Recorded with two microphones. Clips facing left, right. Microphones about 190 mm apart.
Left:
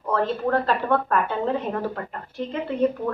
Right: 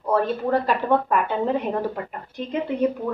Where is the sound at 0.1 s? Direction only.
10° right (ahead or behind).